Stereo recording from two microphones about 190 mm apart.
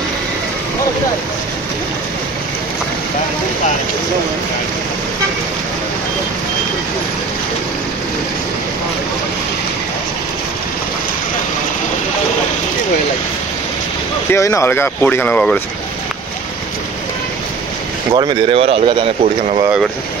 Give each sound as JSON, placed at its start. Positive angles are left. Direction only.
{"t": 14.3, "sound": "speech", "side_deg": 15}
{"t": 18.1, "sound": "speech", "side_deg": -25}